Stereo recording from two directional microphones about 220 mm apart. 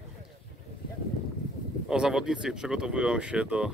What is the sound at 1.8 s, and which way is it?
Speech, 5° right (ahead or behind).